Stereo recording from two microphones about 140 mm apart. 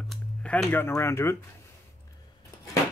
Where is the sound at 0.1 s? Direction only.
5° left (ahead or behind).